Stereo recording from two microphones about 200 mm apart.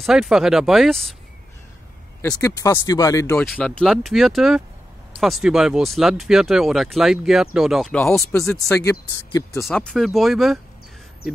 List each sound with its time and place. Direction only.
0.0 s speech: centre (ahead or behind)
2.4 s speech: 15° left (ahead or behind)
3.4 s speech: 5° left (ahead or behind)
9.7 s speech: centre (ahead or behind)